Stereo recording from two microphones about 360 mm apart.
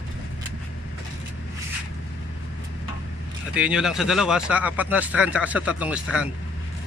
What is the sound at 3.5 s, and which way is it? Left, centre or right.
Speech, centre.